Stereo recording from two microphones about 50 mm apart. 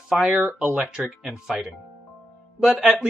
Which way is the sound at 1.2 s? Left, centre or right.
Centre.